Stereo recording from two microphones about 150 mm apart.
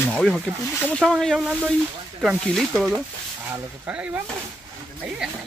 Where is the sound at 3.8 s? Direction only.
15° right (ahead or behind).